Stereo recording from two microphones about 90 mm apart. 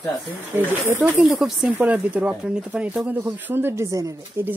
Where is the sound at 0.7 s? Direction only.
20° right (ahead or behind).